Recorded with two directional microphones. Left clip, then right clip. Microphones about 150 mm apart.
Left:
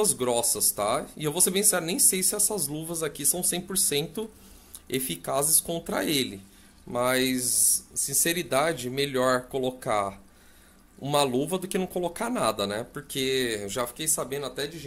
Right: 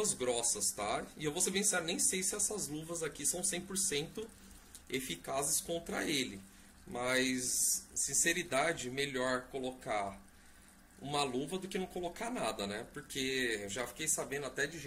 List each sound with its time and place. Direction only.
0.0 s speech: 50° left (ahead or behind)
9.5 s speech: 70° left (ahead or behind)
11.0 s speech: 55° left (ahead or behind); by 14.1 s 40° left (ahead or behind)
14.1 s speech: 25° left (ahead or behind)